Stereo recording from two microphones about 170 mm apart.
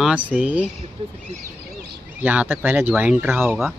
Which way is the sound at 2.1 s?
10° right (ahead or behind).